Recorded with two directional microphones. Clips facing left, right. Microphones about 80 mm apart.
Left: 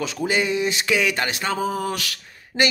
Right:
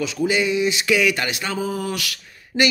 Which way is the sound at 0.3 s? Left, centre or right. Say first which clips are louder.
Right 1 dB; left.